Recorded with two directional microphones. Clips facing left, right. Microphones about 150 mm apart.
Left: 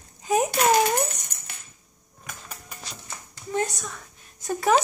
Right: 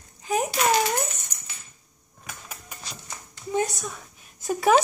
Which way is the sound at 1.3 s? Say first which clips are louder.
Even; 60° left (ahead or behind).